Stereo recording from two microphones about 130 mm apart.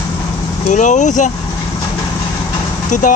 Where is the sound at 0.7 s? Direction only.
70° left (ahead or behind).